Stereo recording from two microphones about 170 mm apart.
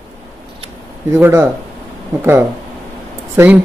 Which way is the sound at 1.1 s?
15° right (ahead or behind).